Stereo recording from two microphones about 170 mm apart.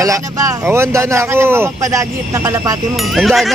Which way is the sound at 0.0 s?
20° right (ahead or behind).